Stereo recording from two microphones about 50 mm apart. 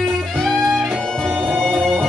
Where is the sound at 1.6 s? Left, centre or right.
Centre.